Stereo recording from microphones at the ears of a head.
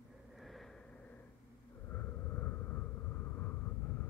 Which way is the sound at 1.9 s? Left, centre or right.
Left.